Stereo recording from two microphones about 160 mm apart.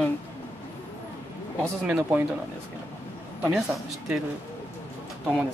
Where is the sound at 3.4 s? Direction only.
15° right (ahead or behind).